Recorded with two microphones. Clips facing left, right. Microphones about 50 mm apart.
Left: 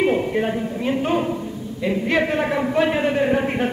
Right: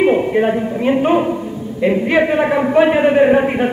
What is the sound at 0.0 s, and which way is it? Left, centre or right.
A man's voice, centre.